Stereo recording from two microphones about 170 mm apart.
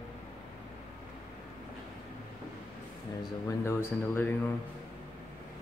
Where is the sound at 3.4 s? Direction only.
15° left (ahead or behind).